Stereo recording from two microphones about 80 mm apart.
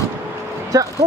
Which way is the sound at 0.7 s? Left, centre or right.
Right.